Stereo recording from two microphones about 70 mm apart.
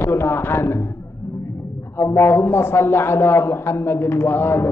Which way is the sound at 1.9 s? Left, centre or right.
Left.